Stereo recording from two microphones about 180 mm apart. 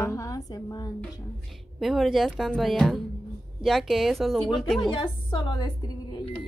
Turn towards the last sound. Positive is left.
turn(degrees=25)  # may be behind; listen again after turning